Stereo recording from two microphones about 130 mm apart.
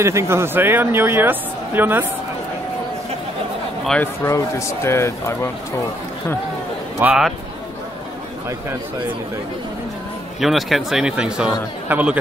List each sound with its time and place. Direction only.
0.0 s speech: 20° right (ahead or behind)
4.0 s speech: 20° left (ahead or behind)
7.0 s speech: 10° right (ahead or behind)
10.4 s speech: centre (ahead or behind)